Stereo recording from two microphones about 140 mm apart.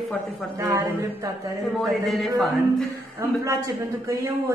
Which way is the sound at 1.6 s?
Centre (ahead or behind).